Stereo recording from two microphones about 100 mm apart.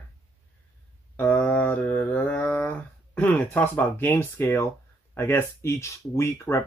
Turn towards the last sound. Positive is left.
turn(degrees=25)  # may be behind; listen again after turning